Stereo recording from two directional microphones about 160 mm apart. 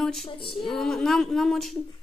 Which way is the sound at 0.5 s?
Centre (ahead or behind).